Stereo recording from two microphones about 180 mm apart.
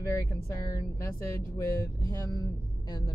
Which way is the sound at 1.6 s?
15° left (ahead or behind).